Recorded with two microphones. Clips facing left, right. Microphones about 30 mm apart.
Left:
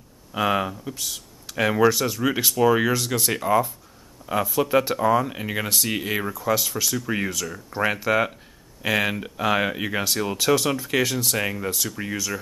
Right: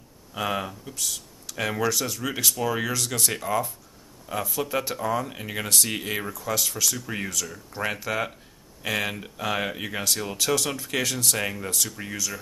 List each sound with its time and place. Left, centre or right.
0.3 s speech: centre